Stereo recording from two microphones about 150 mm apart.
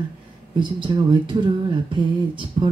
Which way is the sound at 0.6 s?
30° right (ahead or behind).